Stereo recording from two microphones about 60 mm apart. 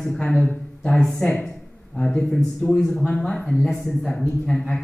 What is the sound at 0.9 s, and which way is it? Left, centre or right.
A man's voice, centre.